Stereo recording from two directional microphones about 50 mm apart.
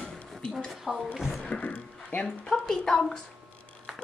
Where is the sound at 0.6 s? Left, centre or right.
Centre.